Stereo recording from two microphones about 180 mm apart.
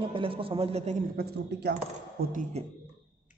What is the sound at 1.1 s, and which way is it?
Speech, 60° right (ahead or behind).